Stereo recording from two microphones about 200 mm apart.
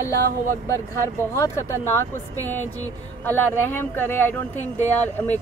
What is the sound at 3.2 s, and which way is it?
A woman's voice, 10° left (ahead or behind).